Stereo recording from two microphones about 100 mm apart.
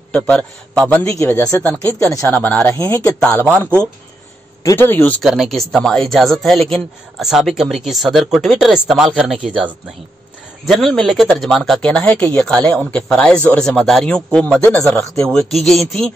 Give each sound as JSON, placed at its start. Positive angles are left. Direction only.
{"t": 0.1, "sound": "speech", "side_deg": 10}
{"t": 1.9, "sound": "speech", "side_deg": 25}
{"t": 3.0, "sound": "speech", "side_deg": 5}
{"t": 3.4, "sound": "speech", "side_deg": -20}
{"t": 4.7, "sound": "speech", "side_deg": 20}
{"t": 5.2, "sound": "speech", "side_deg": -5}
{"t": 10.7, "sound": "speech", "side_deg": 5}